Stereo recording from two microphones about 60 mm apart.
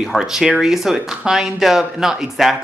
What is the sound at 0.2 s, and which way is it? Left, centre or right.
Speech, centre.